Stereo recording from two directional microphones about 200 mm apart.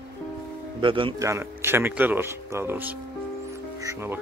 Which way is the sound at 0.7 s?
25° right (ahead or behind).